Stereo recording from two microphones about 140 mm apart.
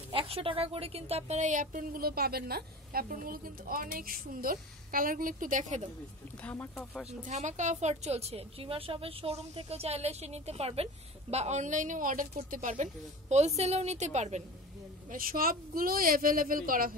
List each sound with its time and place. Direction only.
0.1 s a woman's voice: 40° right (ahead or behind); by 5.8 s 65° right (ahead or behind)
6.4 s speech: 15° left (ahead or behind)
6.7 s speech: centre (ahead or behind)
7.2 s a woman's voice: 60° right (ahead or behind)
15.0 s speech: 90° right